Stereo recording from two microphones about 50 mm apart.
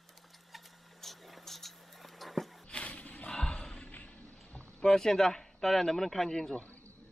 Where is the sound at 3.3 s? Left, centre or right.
Centre.